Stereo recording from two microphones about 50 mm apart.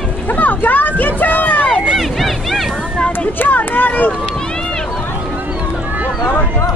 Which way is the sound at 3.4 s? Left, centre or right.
Left.